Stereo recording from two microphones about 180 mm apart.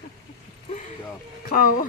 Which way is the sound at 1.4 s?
55° left (ahead or behind).